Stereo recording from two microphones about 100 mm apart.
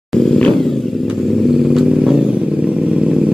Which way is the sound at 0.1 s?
5° left (ahead or behind).